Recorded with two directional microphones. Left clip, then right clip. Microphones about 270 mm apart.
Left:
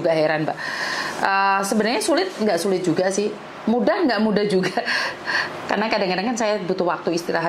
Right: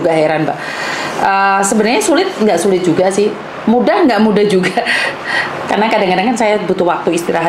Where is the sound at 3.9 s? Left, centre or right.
Centre.